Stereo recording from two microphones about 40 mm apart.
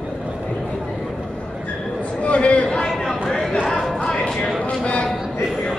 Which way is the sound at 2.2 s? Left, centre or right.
Left.